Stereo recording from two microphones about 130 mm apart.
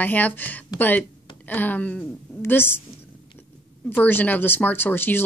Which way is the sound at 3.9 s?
15° left (ahead or behind).